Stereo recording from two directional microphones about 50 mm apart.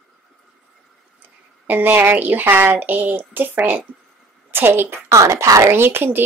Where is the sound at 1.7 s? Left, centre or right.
Right.